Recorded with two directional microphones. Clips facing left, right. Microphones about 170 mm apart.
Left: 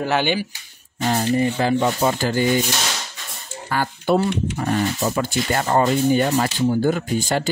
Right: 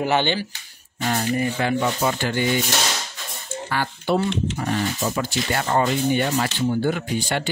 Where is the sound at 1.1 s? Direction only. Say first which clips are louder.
Left 3 dB; 30° left (ahead or behind).